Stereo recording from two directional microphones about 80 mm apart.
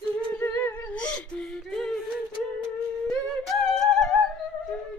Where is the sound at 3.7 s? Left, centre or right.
Centre.